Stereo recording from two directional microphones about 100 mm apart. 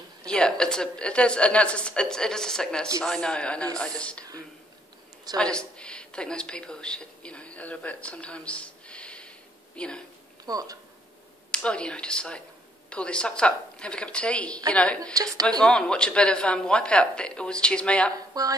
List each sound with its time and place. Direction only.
0.3 s speech: 10° left (ahead or behind)
5.4 s speech: 10° left (ahead or behind)
10.4 s speech: 40° right (ahead or behind)
11.5 s speech: 10° left (ahead or behind)
18.4 s speech: 40° right (ahead or behind)